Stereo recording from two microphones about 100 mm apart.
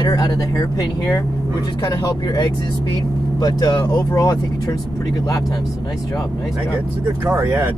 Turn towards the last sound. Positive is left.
turn(degrees=-25)  # may be behind; listen again after turning